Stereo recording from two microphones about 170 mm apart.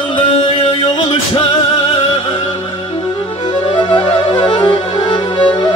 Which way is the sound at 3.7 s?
35° left (ahead or behind).